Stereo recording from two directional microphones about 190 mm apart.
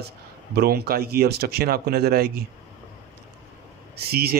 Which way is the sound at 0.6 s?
55° right (ahead or behind).